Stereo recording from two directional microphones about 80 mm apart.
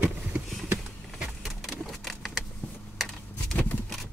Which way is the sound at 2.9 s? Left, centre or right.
Centre.